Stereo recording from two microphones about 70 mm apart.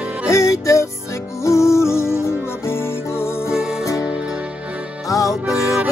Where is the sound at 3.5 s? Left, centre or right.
Centre.